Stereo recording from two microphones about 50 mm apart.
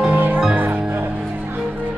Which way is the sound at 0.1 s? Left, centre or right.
Right.